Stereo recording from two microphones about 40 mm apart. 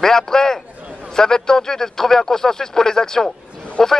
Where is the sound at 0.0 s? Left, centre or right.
Centre.